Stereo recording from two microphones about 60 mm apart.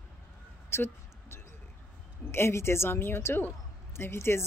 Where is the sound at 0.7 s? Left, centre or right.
Left.